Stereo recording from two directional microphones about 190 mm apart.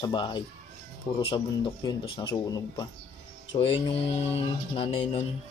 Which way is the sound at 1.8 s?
25° left (ahead or behind).